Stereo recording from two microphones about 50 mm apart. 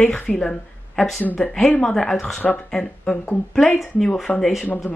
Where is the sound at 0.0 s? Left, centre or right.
Centre.